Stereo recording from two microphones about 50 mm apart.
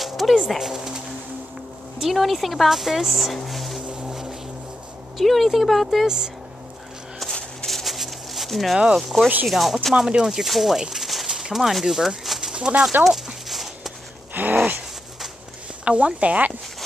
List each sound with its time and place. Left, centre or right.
0.0 s music: centre
2.0 s a woman's voice: centre
3.4 s music: centre
3.9 s music: centre
5.1 s a woman's voice: centre
6.0 s speech: centre
7.6 s a sound: centre
8.9 s a woman's voice: centre
9.9 s speech: centre
12.3 s bird: centre
12.5 s speech: right
13.0 s a sound: centre
14.3 s a sound: right
15.8 s speech: right